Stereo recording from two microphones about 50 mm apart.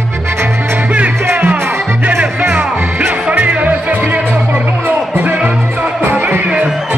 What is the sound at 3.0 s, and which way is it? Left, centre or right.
Music, right.